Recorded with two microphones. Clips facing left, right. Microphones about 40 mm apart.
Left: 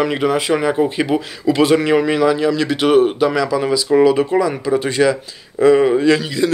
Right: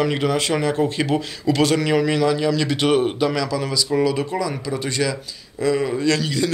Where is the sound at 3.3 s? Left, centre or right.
Centre.